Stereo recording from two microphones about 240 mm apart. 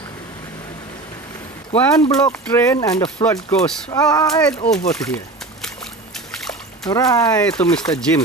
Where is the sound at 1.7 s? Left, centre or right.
Centre.